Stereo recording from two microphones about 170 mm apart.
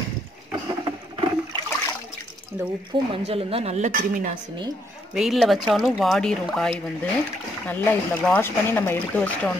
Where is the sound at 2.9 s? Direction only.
30° right (ahead or behind); by 4.4 s 50° right (ahead or behind).